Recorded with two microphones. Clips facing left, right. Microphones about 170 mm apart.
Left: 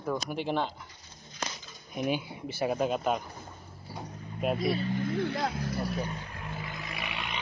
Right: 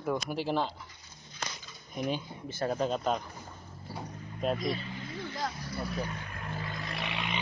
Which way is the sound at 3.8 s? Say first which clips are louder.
Even; 5° left (ahead or behind).